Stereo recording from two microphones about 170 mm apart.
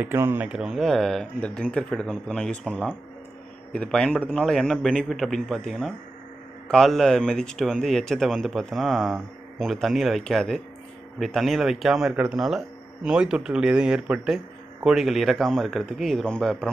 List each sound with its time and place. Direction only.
0.0 s speech: 15° right (ahead or behind); by 16.7 s 5° left (ahead or behind)